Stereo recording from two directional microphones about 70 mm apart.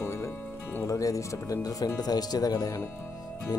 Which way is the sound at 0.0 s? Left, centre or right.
Left.